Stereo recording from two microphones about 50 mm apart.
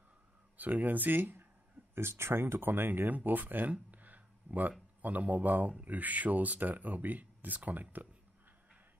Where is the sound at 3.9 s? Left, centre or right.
Right.